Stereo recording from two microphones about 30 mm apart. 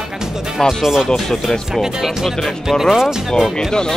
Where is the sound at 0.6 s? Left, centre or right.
Centre.